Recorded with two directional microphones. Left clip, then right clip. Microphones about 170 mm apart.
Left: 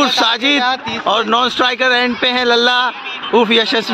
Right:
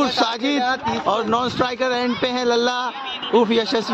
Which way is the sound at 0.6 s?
70° right (ahead or behind).